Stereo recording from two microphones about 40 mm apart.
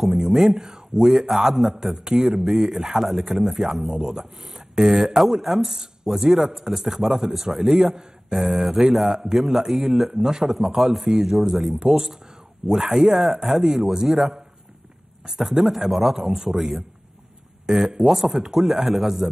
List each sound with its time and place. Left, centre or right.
0.0 s a man's voice: centre
11.1 s speech: centre